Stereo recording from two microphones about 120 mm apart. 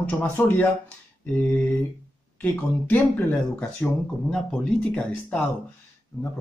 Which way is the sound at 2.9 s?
15° left (ahead or behind).